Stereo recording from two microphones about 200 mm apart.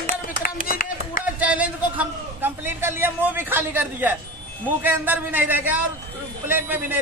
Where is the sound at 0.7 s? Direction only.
45° left (ahead or behind).